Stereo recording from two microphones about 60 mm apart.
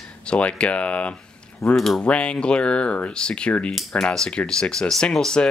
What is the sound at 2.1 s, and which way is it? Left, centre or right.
Speech, centre.